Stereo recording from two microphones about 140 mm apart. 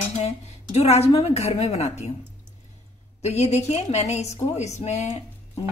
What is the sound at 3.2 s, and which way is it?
Speech, 55° left (ahead or behind).